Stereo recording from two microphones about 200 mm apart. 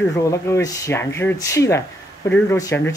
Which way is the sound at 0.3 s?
15° left (ahead or behind).